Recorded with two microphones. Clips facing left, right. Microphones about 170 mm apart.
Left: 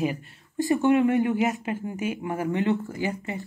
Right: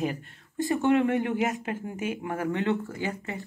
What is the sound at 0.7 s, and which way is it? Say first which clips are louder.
Speech: left 3 dB; 10° left (ahead or behind).